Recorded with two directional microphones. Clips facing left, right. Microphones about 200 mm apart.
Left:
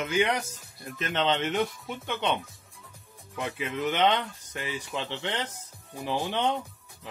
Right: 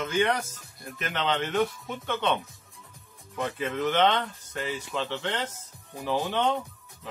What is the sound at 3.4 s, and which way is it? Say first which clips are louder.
Speech: right 2 dB; 10° left (ahead or behind).